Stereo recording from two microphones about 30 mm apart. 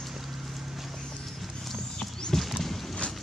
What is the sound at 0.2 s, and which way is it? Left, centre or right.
Clip-clop, centre.